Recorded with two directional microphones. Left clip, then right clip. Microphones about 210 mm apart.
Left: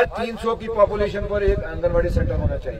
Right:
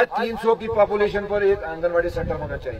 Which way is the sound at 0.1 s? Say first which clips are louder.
Right 3 dB; 35° right (ahead or behind).